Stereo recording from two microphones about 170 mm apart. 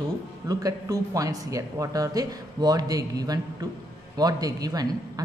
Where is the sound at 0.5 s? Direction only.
20° right (ahead or behind).